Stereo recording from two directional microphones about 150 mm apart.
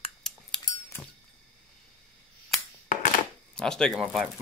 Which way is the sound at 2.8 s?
55° left (ahead or behind).